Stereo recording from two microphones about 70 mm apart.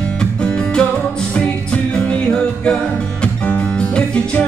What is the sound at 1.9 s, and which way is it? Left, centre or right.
Music, centre.